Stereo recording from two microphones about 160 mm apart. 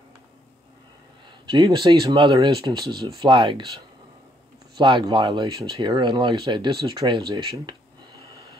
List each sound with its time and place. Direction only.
1.4 s speech: 30° right (ahead or behind)
4.7 s speech: 30° right (ahead or behind)